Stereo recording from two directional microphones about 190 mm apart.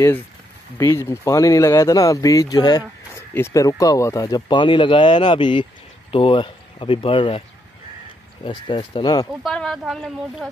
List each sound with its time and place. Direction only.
0.7 s speech: 15° left (ahead or behind)
8.5 s speech: 25° left (ahead or behind)
9.4 s speech: centre (ahead or behind)